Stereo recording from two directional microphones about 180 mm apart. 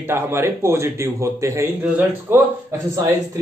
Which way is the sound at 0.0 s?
15° right (ahead or behind).